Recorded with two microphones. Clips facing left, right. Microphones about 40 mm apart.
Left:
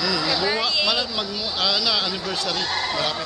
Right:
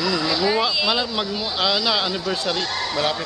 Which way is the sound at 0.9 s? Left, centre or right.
Centre.